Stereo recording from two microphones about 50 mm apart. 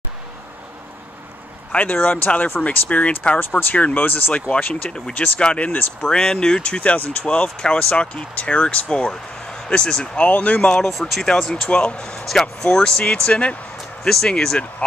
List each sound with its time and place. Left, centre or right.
1.8 s speech: left
3.3 s speech: left
3.7 s speech: left
6.0 s speech: centre; by 7.4 s left
7.4 s speech: centre
10.2 s speech: left
10.8 s speech: centre
11.6 s speech: left
12.3 s speech: centre
14.0 s speech: centre